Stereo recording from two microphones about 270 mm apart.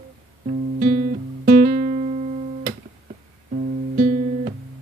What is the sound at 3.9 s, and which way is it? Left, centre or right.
Guitar, right.